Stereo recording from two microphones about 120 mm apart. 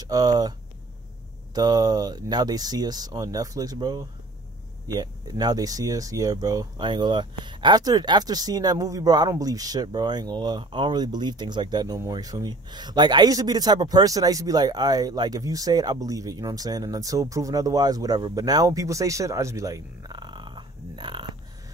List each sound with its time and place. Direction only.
0.0 s speech: 35° right (ahead or behind)